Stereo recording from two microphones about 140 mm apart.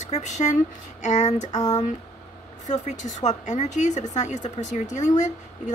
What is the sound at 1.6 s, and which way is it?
Speech, 30° left (ahead or behind).